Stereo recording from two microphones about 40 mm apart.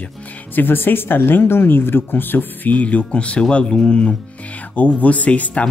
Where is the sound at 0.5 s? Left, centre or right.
Left.